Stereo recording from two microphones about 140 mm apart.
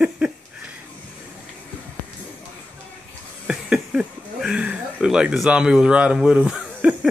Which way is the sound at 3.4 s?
10° right (ahead or behind).